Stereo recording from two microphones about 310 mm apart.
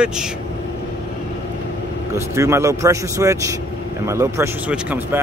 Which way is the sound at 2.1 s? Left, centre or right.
Centre.